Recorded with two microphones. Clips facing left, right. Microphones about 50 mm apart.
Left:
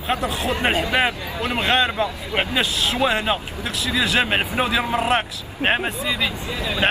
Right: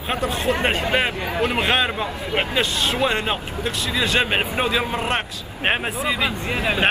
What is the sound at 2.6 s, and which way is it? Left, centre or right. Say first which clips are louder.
A man's voice: even; centre.